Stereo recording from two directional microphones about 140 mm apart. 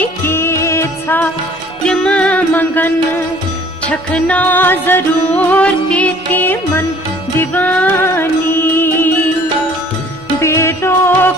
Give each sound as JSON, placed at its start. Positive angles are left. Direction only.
{"t": 0.0, "sound": "music", "side_deg": 15}
{"t": 10.4, "sound": "music", "side_deg": 20}